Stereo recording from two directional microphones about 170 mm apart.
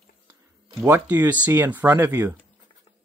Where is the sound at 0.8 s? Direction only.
10° right (ahead or behind).